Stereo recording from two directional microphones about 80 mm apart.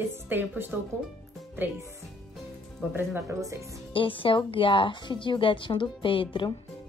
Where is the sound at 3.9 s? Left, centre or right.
Left.